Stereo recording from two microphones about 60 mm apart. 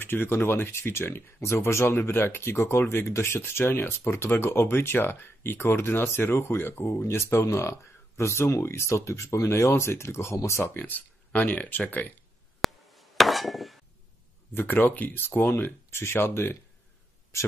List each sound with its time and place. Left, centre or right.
0.0 s speech: left
1.4 s speech: left
10.7 s speech: left
12.6 s hammer: centre
14.5 s speech: left